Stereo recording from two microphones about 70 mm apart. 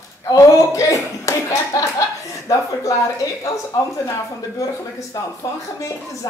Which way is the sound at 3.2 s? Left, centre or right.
Left.